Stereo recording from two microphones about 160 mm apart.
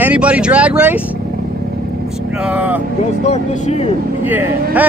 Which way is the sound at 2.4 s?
10° right (ahead or behind).